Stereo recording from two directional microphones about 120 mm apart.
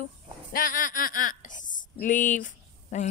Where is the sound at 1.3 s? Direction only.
90° left.